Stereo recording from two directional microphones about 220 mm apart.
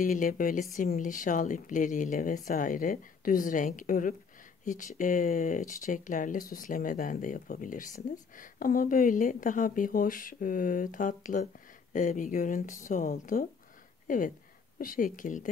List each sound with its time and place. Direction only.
0.0 s speech: 35° left (ahead or behind)